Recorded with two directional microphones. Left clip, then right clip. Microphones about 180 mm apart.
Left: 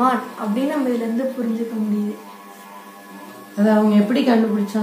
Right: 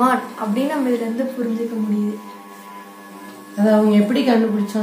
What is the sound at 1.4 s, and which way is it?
Speech, 20° right (ahead or behind).